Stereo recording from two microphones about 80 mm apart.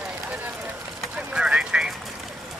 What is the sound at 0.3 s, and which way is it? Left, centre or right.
Run, centre.